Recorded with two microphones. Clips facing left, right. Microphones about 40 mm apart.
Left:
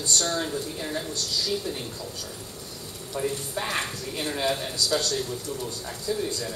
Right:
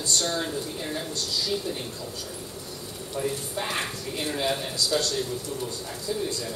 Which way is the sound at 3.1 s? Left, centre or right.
Centre.